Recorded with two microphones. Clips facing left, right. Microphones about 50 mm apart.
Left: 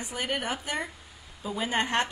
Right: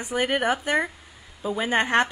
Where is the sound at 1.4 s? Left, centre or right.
Right.